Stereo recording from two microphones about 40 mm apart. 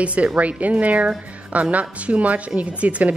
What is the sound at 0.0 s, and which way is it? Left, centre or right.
A woman's voice, right.